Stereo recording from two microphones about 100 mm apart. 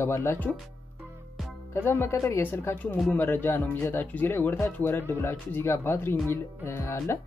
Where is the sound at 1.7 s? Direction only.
20° left (ahead or behind).